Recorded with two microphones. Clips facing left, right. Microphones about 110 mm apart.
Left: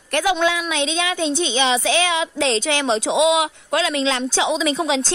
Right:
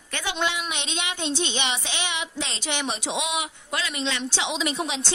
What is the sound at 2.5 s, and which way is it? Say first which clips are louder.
Speech: left 9 dB; 90° left.